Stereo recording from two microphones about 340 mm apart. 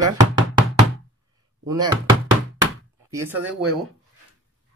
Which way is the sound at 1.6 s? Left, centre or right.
Centre.